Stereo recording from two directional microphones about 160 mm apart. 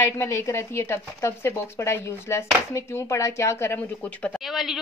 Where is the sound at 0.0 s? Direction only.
15° left (ahead or behind).